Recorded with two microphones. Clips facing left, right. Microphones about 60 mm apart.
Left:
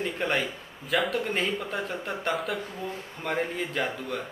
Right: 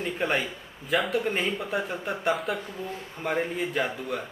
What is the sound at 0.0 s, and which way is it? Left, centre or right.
A man's voice, centre.